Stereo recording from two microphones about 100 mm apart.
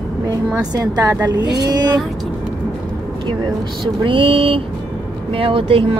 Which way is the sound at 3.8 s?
55° right (ahead or behind).